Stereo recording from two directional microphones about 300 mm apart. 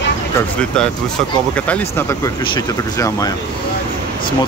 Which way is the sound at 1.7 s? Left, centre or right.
Centre.